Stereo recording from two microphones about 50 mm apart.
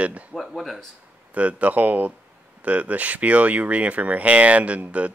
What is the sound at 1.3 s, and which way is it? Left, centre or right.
Speech, right.